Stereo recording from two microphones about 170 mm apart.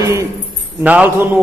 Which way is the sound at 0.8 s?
10° right (ahead or behind).